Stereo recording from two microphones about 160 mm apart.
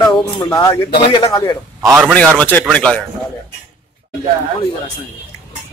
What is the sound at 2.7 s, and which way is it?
Speech, 5° left (ahead or behind).